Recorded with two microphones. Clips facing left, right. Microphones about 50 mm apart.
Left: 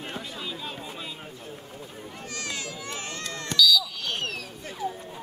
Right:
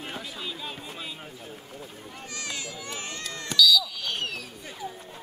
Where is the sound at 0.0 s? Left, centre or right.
Centre.